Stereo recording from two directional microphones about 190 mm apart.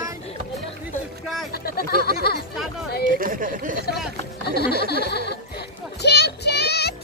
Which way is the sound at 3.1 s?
45° right (ahead or behind).